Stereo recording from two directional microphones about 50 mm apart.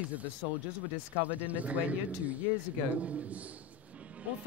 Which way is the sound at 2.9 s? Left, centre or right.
Right.